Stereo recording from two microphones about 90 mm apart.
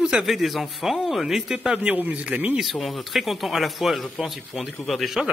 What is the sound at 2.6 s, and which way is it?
Speech, centre (ahead or behind).